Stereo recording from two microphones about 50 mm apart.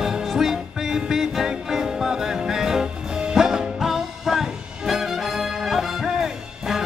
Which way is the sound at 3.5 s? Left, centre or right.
Centre.